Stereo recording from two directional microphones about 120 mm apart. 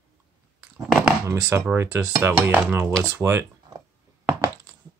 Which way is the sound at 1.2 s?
20° right (ahead or behind).